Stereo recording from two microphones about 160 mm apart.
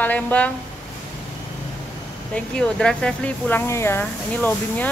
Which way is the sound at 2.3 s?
5° left (ahead or behind).